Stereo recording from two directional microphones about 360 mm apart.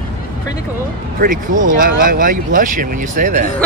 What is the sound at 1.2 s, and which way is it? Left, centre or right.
Speech, right.